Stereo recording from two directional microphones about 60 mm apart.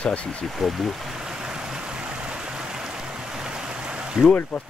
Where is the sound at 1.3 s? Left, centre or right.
Centre.